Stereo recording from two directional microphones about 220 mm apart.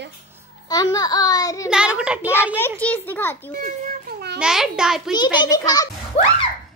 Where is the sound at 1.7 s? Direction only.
5° right (ahead or behind).